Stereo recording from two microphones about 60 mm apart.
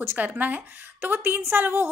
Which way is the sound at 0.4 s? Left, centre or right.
Right.